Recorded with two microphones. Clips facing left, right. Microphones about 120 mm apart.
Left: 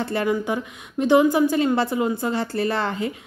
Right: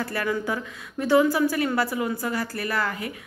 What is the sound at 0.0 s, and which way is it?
A woman's voice, 20° left (ahead or behind).